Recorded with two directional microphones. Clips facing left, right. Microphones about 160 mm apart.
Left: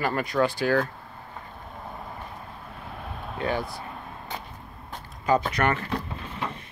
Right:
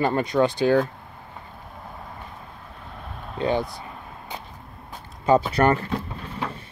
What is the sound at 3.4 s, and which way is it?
Speech, 20° right (ahead or behind).